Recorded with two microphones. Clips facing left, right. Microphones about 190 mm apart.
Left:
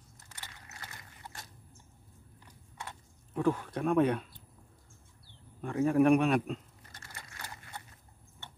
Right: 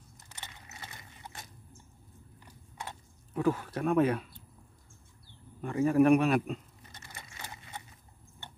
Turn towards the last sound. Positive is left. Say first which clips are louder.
# right 1 dB
turn(degrees=-20)  # may be behind; listen again after turning